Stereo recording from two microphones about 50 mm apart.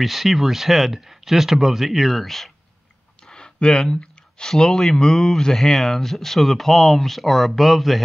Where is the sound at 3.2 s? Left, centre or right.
Centre.